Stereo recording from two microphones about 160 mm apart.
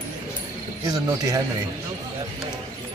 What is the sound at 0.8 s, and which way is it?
Speech, 25° right (ahead or behind).